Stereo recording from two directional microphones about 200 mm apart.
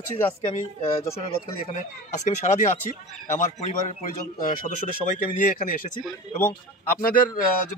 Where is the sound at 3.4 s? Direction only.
40° left (ahead or behind).